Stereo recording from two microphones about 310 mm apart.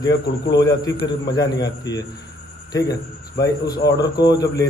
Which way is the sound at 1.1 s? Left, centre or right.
Centre.